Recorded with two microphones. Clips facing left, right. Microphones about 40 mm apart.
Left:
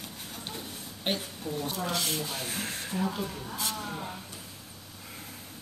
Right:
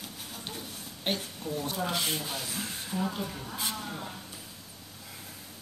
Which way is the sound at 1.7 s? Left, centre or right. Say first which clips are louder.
Right 1 dB; centre.